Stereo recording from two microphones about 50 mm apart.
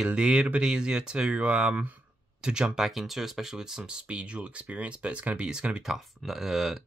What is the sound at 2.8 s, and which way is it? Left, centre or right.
Speech, centre.